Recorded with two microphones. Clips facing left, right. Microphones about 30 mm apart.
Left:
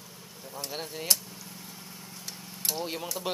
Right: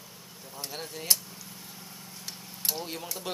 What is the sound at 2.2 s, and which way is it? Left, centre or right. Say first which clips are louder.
Vehicle: even; centre.